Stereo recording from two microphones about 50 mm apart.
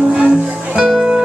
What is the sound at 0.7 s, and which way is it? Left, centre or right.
Music, centre.